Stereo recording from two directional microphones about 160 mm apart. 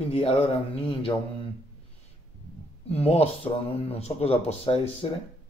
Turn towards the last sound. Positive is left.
turn(degrees=35)  # may be behind; listen again after turning